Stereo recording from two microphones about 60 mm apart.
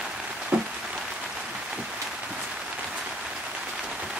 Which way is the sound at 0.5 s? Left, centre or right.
Centre.